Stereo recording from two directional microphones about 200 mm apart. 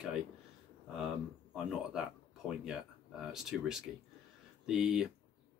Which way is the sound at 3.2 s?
5° right (ahead or behind).